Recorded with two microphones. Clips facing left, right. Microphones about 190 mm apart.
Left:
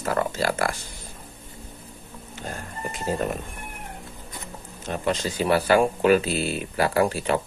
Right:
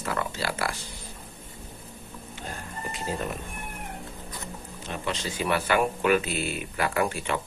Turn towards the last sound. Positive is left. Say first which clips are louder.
# left 5 dB
turn(degrees=35)  # may be behind; listen again after turning